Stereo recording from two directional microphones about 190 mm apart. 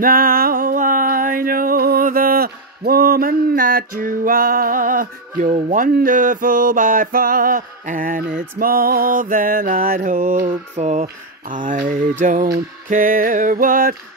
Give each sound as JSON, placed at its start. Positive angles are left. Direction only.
{"t": 0.0, "sound": "music", "side_deg": -50}
{"t": 8.5, "sound": "mantra", "side_deg": -50}